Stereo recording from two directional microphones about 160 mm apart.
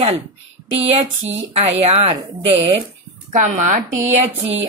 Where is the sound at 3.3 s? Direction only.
50° right (ahead or behind).